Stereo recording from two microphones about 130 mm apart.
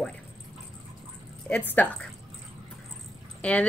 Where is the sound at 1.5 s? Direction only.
10° left (ahead or behind).